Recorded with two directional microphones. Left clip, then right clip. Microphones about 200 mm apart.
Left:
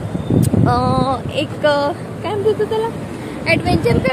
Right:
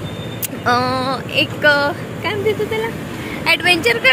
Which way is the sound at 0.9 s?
15° left (ahead or behind).